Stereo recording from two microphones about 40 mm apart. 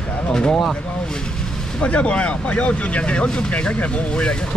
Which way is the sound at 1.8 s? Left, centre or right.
Left.